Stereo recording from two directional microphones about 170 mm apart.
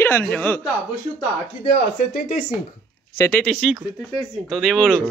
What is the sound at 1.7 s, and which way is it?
Speech, 60° left (ahead or behind).